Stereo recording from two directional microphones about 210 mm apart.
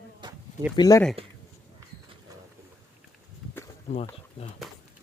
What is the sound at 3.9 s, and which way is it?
Speech, 30° left (ahead or behind).